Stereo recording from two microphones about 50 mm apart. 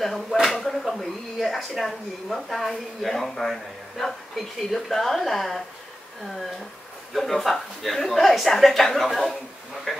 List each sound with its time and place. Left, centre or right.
0.0 s speech: centre
7.2 s speech: centre